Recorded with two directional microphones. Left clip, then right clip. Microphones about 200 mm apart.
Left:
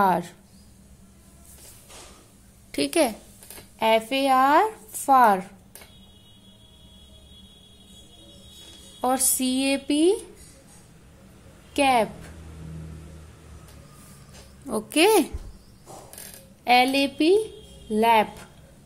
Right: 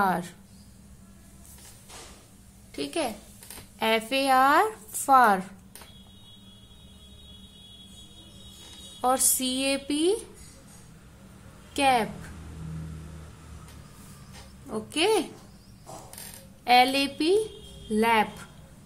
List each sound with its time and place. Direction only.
0.0 s speech: 20° left (ahead or behind)
2.7 s a woman's voice: 35° left (ahead or behind)
3.8 s speech: 10° left (ahead or behind)
9.0 s speech: 20° left (ahead or behind)
11.7 s a woman's voice: 20° left (ahead or behind)
14.7 s a woman's voice: 30° left (ahead or behind)
16.6 s speech: 15° left (ahead or behind)